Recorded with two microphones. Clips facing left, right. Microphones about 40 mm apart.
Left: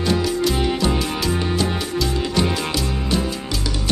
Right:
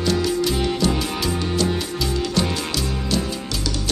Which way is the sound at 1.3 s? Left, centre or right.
Centre.